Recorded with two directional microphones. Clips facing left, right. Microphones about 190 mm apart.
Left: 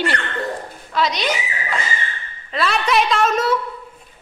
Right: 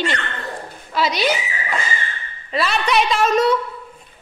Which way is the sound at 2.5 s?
Centre (ahead or behind).